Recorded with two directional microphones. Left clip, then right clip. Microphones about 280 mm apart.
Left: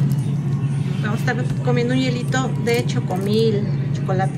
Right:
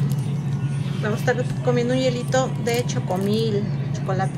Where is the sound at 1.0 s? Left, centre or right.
Centre.